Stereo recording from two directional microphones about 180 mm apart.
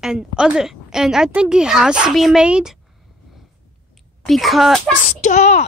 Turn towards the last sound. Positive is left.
turn(degrees=40)  # may be behind; listen again after turning